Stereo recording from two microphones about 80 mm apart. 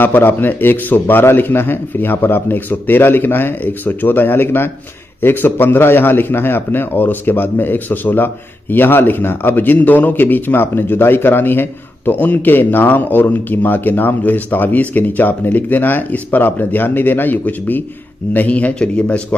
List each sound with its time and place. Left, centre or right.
0.0 s a man's voice: left